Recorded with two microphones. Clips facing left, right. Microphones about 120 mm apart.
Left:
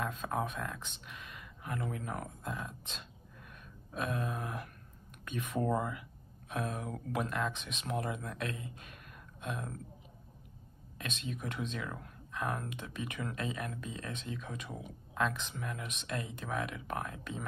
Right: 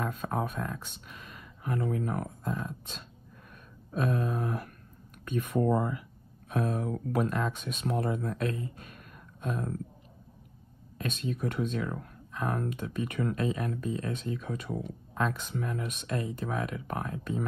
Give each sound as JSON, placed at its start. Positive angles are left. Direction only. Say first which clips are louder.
{"t": 0.0, "sound": "speech", "louder": "right 3 dB", "side_deg": -45}
{"t": 11.0, "sound": "speech", "louder": "right 8 dB", "side_deg": -40}